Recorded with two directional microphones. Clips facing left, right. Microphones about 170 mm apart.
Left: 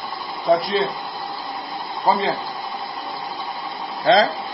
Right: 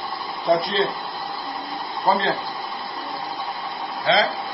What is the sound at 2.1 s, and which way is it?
Speech, 10° left (ahead or behind).